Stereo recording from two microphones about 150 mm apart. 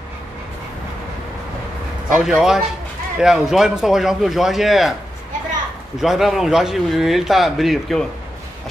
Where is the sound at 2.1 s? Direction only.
5° right (ahead or behind).